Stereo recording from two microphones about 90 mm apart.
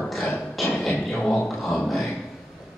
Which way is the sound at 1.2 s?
20° left (ahead or behind).